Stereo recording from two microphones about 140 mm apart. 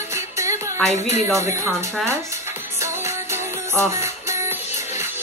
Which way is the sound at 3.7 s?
20° right (ahead or behind).